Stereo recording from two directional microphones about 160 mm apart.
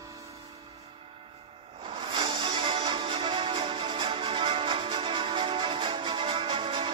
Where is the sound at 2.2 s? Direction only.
30° right (ahead or behind).